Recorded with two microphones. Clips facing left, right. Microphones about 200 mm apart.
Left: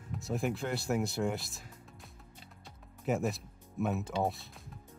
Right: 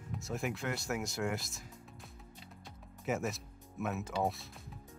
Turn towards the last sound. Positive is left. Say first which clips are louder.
# left 2 dB
turn(degrees=0)  # may be behind; listen again after turning